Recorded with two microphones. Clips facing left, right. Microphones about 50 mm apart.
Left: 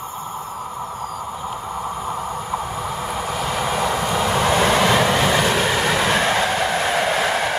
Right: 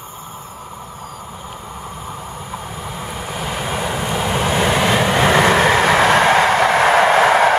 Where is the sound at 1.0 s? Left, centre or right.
Left.